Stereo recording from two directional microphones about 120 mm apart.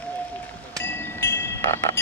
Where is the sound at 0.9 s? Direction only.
20° left (ahead or behind).